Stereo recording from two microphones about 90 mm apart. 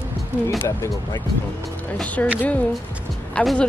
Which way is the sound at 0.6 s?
30° left (ahead or behind).